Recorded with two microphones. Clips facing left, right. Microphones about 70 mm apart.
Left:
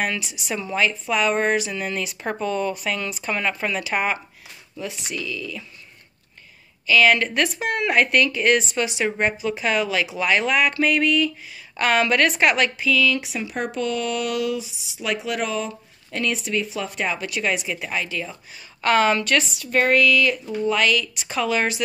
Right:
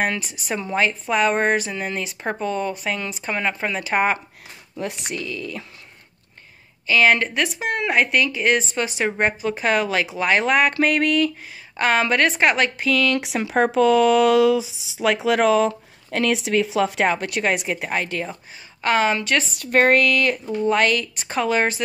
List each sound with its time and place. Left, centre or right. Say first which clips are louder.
0.0 s speech: right 2 dB; right
4.7 s speech: right 2 dB; right
6.9 s speech: even; right
7.2 s speech: even; centre; by 11.3 s right
11.7 s speech: even; right
12.7 s speech: right 1 dB; right
15.0 s speech: right 7 dB; right
18.8 s speech: left 1 dB; centre
19.5 s speech: right 5 dB; right